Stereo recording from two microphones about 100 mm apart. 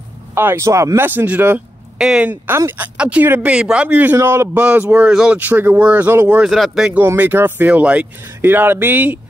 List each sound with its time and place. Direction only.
0.3 s speech: 25° right (ahead or behind)
1.0 s speech: 20° right (ahead or behind)
2.4 s speech: 20° right (ahead or behind)
4.6 s speech: 15° right (ahead or behind)
6.5 s speech: centre (ahead or behind)
6.9 s speech: 20° right (ahead or behind)